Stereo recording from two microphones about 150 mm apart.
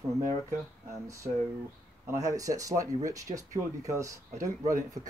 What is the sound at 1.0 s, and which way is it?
Speech, 20° right (ahead or behind).